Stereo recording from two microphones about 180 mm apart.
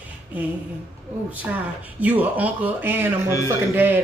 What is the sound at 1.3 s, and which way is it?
A woman's voice, 10° right (ahead or behind).